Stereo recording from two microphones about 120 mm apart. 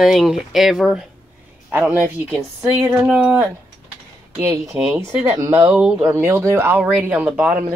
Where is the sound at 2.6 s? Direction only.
25° right (ahead or behind).